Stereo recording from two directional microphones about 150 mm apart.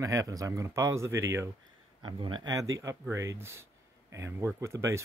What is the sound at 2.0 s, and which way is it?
Speech, 30° right (ahead or behind).